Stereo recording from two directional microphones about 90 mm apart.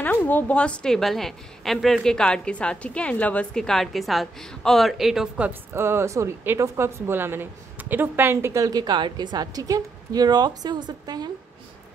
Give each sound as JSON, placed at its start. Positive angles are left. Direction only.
{"t": 0.0, "sound": "a woman's voice", "side_deg": 20}
{"t": 5.5, "sound": "speech", "side_deg": -25}
{"t": 8.6, "sound": "a woman's voice", "side_deg": -50}